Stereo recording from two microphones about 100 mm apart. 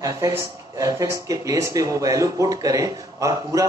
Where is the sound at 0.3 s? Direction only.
35° right (ahead or behind).